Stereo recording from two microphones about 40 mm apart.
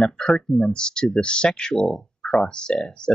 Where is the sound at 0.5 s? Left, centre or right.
Centre.